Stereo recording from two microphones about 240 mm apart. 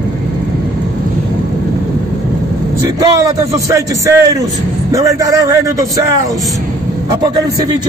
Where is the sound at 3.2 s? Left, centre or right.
Centre.